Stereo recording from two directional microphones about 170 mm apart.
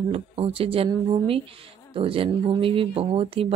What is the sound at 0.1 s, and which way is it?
A woman's voice, 35° right (ahead or behind).